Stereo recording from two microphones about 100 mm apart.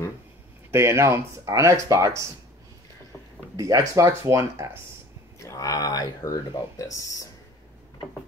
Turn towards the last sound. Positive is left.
turn(degrees=35)  # may be behind; listen again after turning